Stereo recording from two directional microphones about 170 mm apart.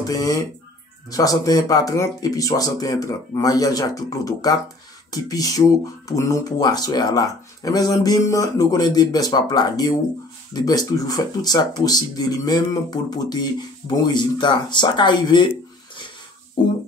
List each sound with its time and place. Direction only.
0.0 s speech: 20° left (ahead or behind)
16.6 s speech: 25° left (ahead or behind)